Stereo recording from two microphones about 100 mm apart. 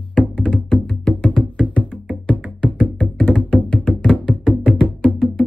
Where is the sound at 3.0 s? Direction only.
5° left (ahead or behind).